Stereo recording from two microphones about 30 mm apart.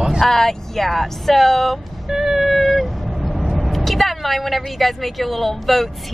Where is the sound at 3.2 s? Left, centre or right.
Centre.